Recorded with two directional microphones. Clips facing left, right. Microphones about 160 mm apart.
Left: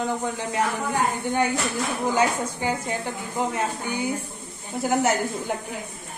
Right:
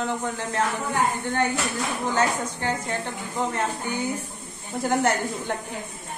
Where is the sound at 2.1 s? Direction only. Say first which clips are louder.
Left 1 dB; 10° left (ahead or behind).